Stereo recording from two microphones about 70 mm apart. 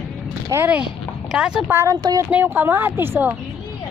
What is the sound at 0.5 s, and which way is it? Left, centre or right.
Speech, right.